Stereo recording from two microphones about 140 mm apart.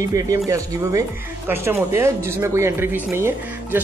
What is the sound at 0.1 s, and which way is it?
Speech, 25° right (ahead or behind).